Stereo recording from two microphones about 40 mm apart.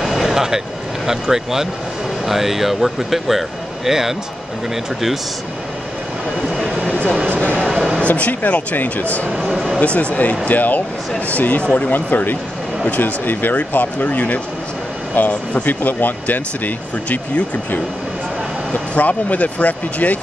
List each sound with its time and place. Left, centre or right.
0.2 s vehicle: centre
1.0 s speech: centre
6.9 s vehicle: left
8.0 s speech: left
9.5 s speech: centre
9.8 s speech: left
11.9 s speech: left
13.6 s speech: left
18.7 s speech: left